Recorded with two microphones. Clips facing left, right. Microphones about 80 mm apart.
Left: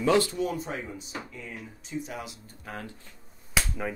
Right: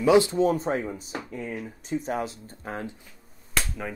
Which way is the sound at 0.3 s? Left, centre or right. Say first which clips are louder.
Right 7 dB; right.